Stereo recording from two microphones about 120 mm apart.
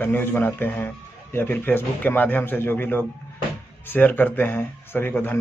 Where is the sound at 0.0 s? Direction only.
15° left (ahead or behind).